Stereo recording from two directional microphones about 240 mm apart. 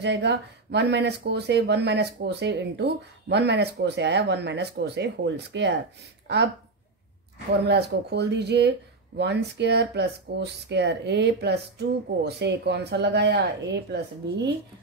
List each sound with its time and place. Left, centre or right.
0.0 s speech: right
7.6 s speech: right